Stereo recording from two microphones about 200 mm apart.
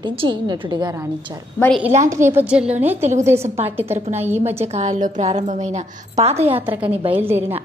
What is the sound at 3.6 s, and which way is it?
Speech, 10° right (ahead or behind).